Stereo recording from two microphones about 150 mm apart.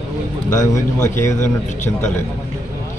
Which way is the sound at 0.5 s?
20° left (ahead or behind).